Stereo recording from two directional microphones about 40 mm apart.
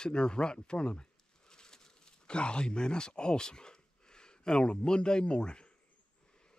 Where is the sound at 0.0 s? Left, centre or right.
Left.